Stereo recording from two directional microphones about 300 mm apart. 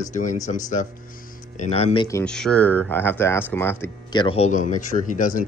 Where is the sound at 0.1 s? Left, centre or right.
Left.